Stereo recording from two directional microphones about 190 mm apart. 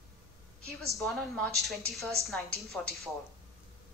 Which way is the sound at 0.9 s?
Centre (ahead or behind).